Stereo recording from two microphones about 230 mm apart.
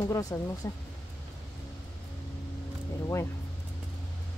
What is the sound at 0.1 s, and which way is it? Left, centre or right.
Speech, centre.